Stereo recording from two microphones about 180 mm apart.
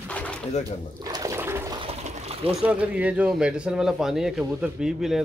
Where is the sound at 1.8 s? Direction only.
35° right (ahead or behind).